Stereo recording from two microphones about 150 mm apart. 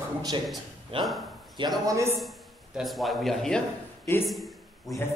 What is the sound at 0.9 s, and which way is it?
Speech, 35° right (ahead or behind).